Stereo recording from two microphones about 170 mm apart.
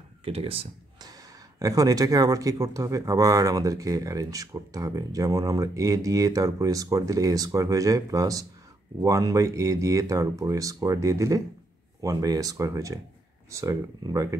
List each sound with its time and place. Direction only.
0.2 s speech: 35° right (ahead or behind)
1.6 s speech: 20° right (ahead or behind)